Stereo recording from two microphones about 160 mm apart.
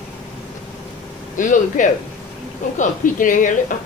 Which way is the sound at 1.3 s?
55° left (ahead or behind).